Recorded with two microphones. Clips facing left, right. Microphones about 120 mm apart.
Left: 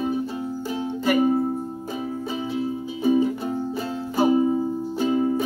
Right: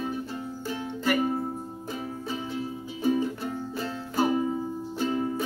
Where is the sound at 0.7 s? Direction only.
20° left (ahead or behind).